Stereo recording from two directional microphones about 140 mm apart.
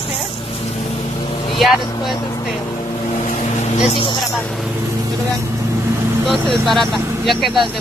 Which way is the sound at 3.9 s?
35° left (ahead or behind).